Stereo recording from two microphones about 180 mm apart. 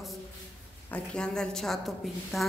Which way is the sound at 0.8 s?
5° left (ahead or behind).